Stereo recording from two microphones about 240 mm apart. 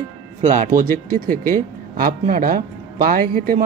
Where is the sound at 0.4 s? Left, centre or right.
Right.